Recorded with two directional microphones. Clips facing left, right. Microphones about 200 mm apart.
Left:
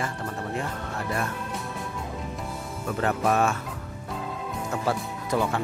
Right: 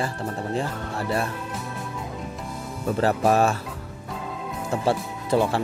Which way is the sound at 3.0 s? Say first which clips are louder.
Right 3 dB; 35° right (ahead or behind).